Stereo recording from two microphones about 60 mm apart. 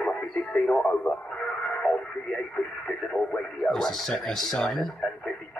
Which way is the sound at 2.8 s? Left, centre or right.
Centre.